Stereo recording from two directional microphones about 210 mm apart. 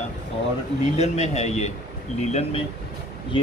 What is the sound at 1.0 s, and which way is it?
Speech, 30° left (ahead or behind).